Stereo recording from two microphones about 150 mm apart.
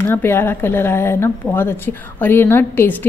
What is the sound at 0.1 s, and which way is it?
A woman's voice, 15° left (ahead or behind).